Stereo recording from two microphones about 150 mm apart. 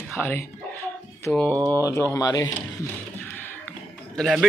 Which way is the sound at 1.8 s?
20° left (ahead or behind).